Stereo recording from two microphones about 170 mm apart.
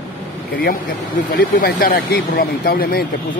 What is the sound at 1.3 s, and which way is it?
Speech, 65° left (ahead or behind).